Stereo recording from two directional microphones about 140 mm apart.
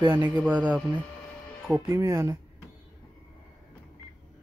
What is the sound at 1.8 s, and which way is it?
Speech, 20° right (ahead or behind).